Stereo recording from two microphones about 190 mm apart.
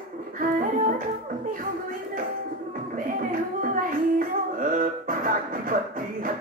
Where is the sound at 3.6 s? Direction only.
45° right (ahead or behind).